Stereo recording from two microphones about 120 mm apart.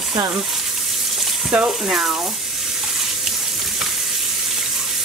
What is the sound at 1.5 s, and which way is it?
Speech, 5° right (ahead or behind).